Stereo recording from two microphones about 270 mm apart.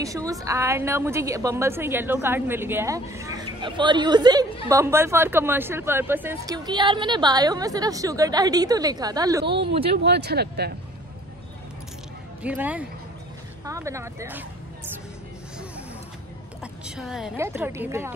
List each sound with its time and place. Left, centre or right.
0.3 s a woman's voice: centre
9.8 s speech: right
12.4 s speech: centre
16.8 s a woman's voice: centre